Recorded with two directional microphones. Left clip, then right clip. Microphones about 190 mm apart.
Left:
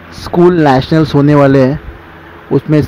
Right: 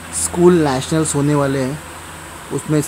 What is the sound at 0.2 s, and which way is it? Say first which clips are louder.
Speech: left 5 dB; 20° left (ahead or behind).